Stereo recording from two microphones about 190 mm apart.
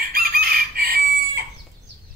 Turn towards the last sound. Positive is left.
turn(degrees=-55)  # may be behind; listen again after turning